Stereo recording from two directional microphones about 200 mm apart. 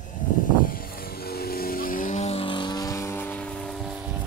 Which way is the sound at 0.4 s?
45° left (ahead or behind).